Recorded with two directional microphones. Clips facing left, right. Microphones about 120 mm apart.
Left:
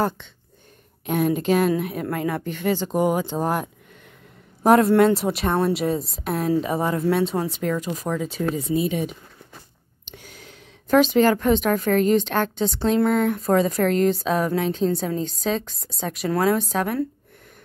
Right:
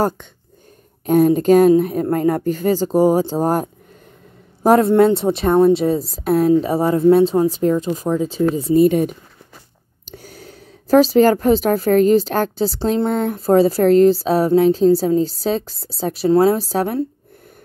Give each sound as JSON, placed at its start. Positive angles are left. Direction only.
{"t": 1.0, "sound": "a woman's voice", "side_deg": -40}
{"t": 6.2, "sound": "a woman's voice", "side_deg": -40}
{"t": 8.8, "sound": "speech", "side_deg": -50}
{"t": 10.0, "sound": "a woman's voice", "side_deg": -40}